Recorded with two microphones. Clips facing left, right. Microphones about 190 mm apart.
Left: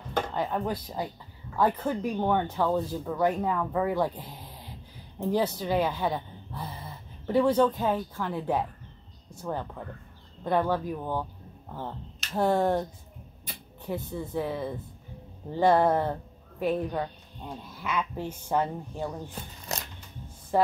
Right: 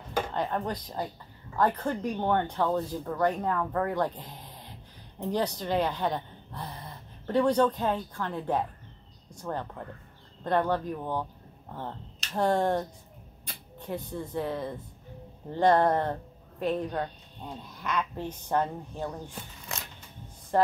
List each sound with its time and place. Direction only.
0.3 s a woman's voice: 5° left (ahead or behind)
19.7 s music: 40° left (ahead or behind)
20.5 s speech: 10° left (ahead or behind)